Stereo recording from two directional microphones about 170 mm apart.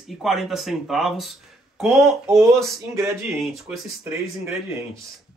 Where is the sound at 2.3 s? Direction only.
15° right (ahead or behind).